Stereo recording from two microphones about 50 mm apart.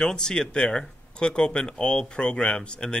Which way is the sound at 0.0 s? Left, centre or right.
Centre.